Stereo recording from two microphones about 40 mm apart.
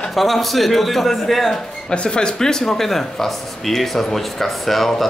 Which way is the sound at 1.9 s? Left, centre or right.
Left.